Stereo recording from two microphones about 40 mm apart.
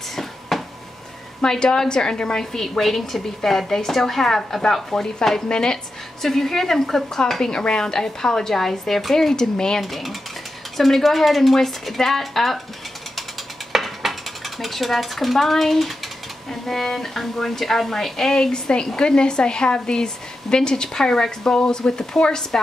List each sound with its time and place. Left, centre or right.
0.1 s a sound: centre
1.4 s a woman's voice: centre
2.5 s a woman's voice: centre
6.2 s a woman's voice: centre
9.8 s speech: centre
13.7 s dishes: centre
16.4 s a woman's voice: centre